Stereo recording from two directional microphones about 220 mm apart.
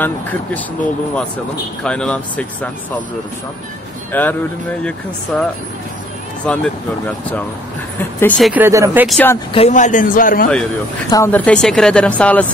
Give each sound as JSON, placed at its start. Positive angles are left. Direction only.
{"t": 0.0, "sound": "speech", "side_deg": 5}
{"t": 1.8, "sound": "speech", "side_deg": 5}
{"t": 4.1, "sound": "speech", "side_deg": 10}
{"t": 8.0, "sound": "speech", "side_deg": 10}
{"t": 8.6, "sound": "speech", "side_deg": -15}
{"t": 9.5, "sound": "a man's voice", "side_deg": 30}
{"t": 11.1, "sound": "speech", "side_deg": 10}